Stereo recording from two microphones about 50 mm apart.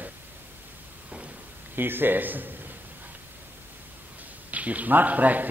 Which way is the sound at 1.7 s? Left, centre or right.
Right.